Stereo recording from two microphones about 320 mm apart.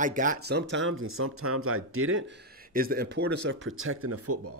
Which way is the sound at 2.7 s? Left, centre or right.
Right.